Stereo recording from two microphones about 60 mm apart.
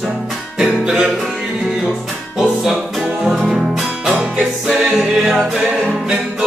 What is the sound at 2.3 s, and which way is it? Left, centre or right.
Music, centre.